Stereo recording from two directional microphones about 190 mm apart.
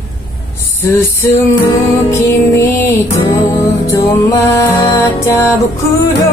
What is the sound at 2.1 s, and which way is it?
Music, 15° left (ahead or behind).